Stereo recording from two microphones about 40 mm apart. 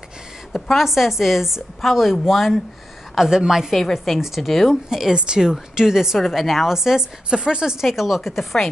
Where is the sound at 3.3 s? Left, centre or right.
Centre.